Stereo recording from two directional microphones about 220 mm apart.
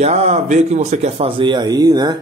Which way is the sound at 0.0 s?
30° right (ahead or behind).